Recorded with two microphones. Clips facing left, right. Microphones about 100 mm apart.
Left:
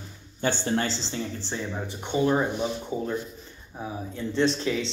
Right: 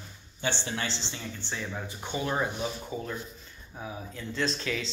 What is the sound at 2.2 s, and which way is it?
Speech, 25° left (ahead or behind).